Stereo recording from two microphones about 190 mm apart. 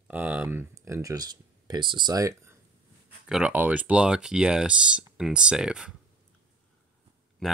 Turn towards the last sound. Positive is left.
turn(degrees=0)  # may be behind; listen again after turning